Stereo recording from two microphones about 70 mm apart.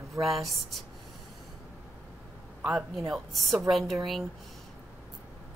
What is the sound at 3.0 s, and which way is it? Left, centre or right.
Speech, centre.